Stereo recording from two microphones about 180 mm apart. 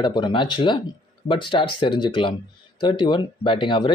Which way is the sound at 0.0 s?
25° left (ahead or behind).